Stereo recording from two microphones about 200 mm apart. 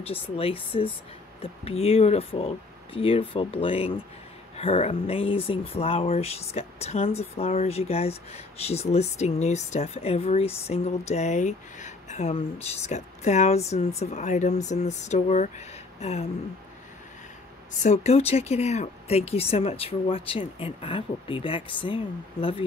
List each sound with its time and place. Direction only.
0.0 s speech: 30° left (ahead or behind)
17.8 s speech: 35° left (ahead or behind)